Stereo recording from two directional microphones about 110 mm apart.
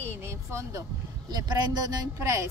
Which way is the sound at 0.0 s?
25° right (ahead or behind).